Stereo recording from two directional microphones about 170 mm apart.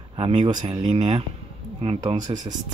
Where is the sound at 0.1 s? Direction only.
30° right (ahead or behind).